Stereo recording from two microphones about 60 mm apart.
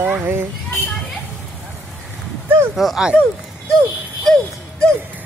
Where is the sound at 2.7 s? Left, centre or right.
Centre.